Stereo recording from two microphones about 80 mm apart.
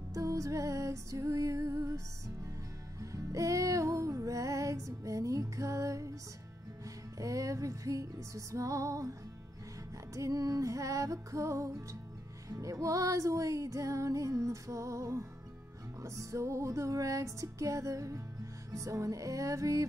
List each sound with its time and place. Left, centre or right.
0.1 s music: right
3.0 s music: right
7.2 s music: right
10.1 s music: right